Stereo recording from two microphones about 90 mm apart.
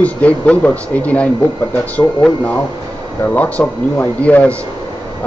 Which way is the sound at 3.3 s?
20° left (ahead or behind).